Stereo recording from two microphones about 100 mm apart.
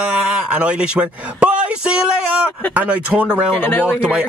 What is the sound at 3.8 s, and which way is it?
Speech, 15° right (ahead or behind).